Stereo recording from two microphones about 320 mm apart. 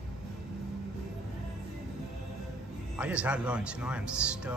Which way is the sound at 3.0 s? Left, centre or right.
Centre.